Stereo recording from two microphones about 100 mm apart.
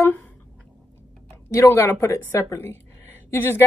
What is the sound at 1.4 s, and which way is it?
A woman's voice, 25° left (ahead or behind).